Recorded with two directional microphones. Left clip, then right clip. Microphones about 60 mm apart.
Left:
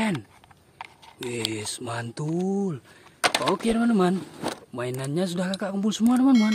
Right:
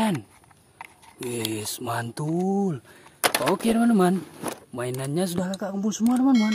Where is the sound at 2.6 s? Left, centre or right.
Right.